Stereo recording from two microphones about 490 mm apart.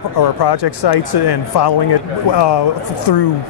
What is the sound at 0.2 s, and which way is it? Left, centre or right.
Speech, left.